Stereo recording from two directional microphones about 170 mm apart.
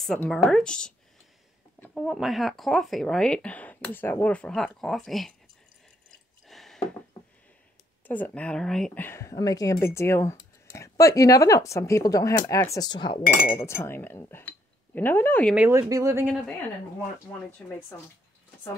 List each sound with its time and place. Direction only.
0.0 s speech: centre (ahead or behind)
6.4 s a sound: centre (ahead or behind)
8.1 s speech: 10° left (ahead or behind)
12.7 s cutlery: 25° left (ahead or behind)
13.6 s speech: 15° left (ahead or behind)
15.5 s speech: 10° right (ahead or behind)